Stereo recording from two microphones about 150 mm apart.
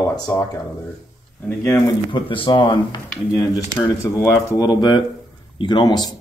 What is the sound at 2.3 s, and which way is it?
Speech, 35° left (ahead or behind).